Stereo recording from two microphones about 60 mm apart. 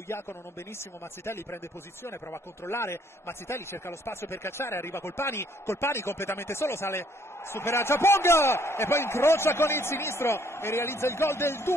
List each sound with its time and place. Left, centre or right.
0.1 s a man's voice: left